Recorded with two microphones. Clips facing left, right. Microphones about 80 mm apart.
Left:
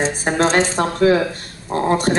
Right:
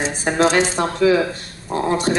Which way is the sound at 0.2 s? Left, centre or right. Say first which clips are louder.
Right 2 dB; left.